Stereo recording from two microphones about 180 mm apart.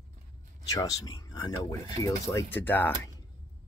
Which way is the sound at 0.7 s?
20° left (ahead or behind).